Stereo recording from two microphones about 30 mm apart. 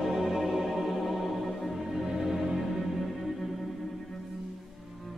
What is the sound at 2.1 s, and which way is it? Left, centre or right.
Music, centre.